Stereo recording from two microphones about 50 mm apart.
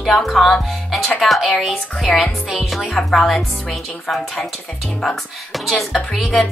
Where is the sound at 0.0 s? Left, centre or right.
Centre.